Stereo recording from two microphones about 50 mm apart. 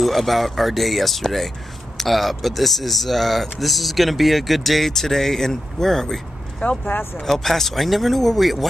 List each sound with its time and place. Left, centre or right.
0.0 s speech: centre
6.8 s speech: left
7.2 s speech: centre